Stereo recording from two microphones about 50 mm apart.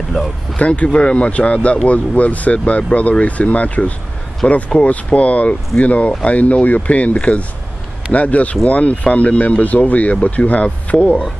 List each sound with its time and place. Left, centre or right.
0.6 s speech: left